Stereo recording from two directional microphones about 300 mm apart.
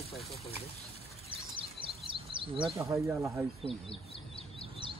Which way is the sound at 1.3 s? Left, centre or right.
Centre.